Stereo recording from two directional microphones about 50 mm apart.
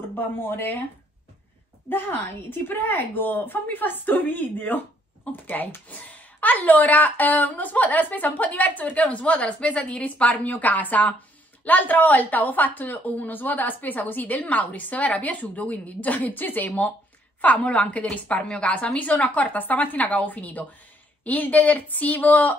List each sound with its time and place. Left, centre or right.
0.1 s speech: left
1.9 s a woman's voice: left